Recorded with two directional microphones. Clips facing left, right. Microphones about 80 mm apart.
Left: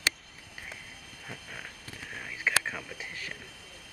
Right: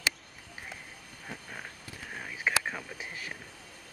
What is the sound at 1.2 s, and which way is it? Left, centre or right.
Whispering, centre.